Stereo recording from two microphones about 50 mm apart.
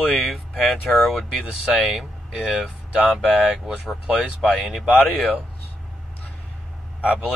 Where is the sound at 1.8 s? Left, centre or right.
Centre.